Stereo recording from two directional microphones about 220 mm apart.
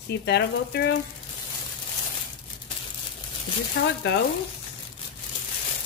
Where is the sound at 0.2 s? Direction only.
50° left (ahead or behind).